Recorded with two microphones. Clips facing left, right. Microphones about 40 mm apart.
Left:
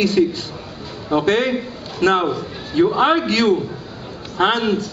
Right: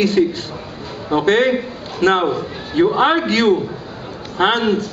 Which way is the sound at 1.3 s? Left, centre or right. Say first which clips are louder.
Right 3 dB; centre.